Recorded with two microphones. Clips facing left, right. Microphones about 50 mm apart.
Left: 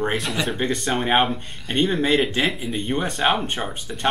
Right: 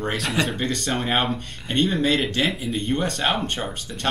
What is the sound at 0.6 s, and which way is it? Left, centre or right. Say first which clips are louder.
Speech: left 2 dB; centre.